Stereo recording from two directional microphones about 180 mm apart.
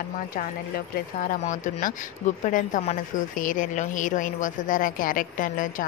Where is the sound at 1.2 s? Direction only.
45° left (ahead or behind).